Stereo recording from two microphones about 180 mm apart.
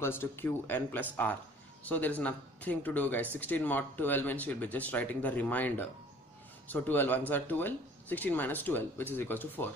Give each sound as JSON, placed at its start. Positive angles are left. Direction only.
{"t": 0.0, "sound": "speech", "side_deg": 10}